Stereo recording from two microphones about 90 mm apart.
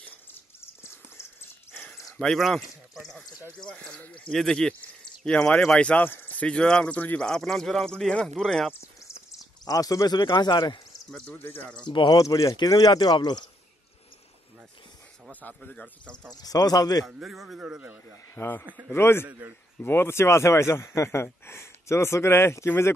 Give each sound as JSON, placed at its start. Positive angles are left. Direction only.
{"t": 0.0, "sound": "a sound", "side_deg": 20}
{"t": 2.1, "sound": "speech", "side_deg": 5}
{"t": 7.2, "sound": "speech", "side_deg": 5}
{"t": 9.7, "sound": "speech", "side_deg": 40}
{"t": 10.1, "sound": "speech", "side_deg": 60}
{"t": 11.1, "sound": "speech", "side_deg": 10}
{"t": 11.3, "sound": "speech", "side_deg": 25}
{"t": 11.9, "sound": "speech", "side_deg": 55}
{"t": 12.2, "sound": "speech", "side_deg": 40}
{"t": 15.4, "sound": "speech", "side_deg": 20}
{"t": 16.3, "sound": "speech", "side_deg": 45}
{"t": 17.0, "sound": "speech", "side_deg": 0}
{"t": 18.3, "sound": "speech", "side_deg": 25}